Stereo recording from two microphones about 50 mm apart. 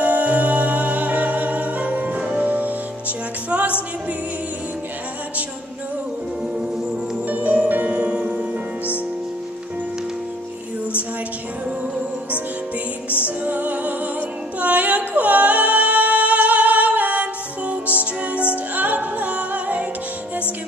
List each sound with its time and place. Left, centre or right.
0.0 s music: right
3.4 s a capella: right
7.2 s music: right
13.2 s music: right
14.6 s singing: right
18.8 s a capella: right